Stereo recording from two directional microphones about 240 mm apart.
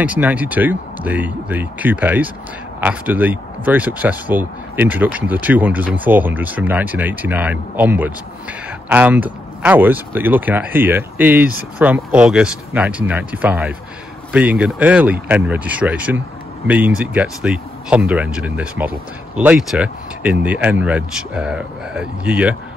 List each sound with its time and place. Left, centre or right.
0.0 s speech: centre